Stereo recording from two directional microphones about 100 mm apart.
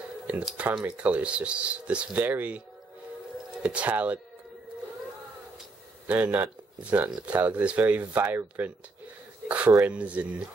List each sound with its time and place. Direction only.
0.3 s speech: 15° right (ahead or behind)
3.6 s speech: 15° right (ahead or behind)
6.0 s speech: 15° right (ahead or behind)
9.8 s speech: 15° right (ahead or behind)